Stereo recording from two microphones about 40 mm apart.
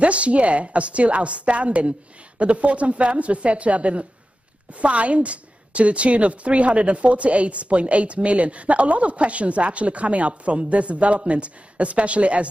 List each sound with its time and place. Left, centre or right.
0.0 s a woman's voice: right